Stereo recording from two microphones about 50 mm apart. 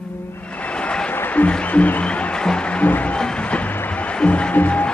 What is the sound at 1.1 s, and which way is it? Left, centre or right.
Applause, left.